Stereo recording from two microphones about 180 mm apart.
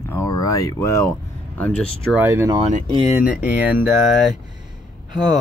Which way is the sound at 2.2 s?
15° right (ahead or behind).